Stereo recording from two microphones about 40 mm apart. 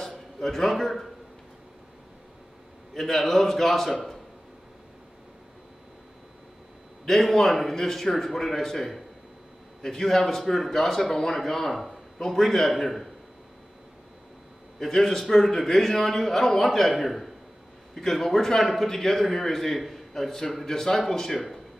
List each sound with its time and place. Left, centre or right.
0.0 s a man's voice: centre
2.9 s a man's voice: centre
7.1 s a man's voice: centre
14.8 s a man's voice: centre